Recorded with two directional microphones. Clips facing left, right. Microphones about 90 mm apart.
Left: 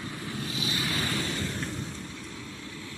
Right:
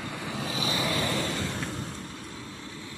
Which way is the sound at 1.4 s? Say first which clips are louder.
Right 1 dB; 90° right.